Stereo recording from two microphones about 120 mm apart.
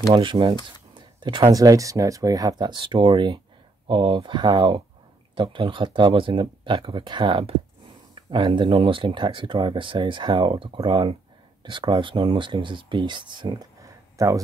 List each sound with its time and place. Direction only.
0.1 s speech: 40° right (ahead or behind)
0.9 s a sound: 40° right (ahead or behind)
1.5 s speech: 30° right (ahead or behind)